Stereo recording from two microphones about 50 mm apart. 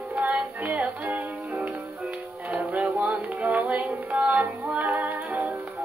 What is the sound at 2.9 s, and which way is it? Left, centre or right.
Music, right.